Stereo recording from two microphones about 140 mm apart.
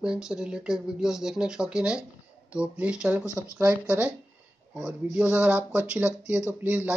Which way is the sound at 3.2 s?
20° left (ahead or behind).